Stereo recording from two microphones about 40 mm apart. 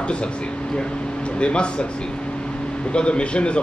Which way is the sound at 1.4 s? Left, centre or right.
Left.